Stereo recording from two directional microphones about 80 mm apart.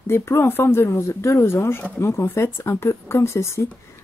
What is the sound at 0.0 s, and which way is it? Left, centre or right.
Speech, left.